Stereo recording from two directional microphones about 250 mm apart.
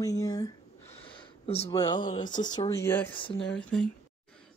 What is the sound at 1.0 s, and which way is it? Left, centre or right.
Speech, centre.